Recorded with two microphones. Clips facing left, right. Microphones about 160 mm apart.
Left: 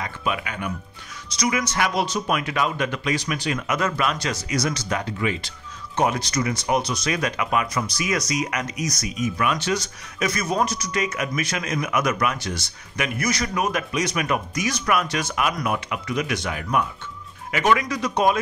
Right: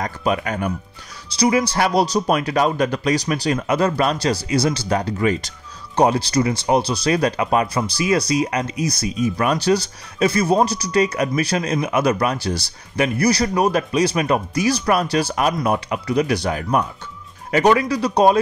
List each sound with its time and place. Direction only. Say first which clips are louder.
0.0 s speech: right 6 dB; 40° right (ahead or behind)
1.3 s speech: right 7 dB; 30° right (ahead or behind)